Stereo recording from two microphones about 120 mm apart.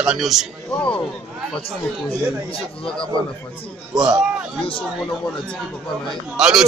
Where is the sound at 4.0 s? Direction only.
5° right (ahead or behind).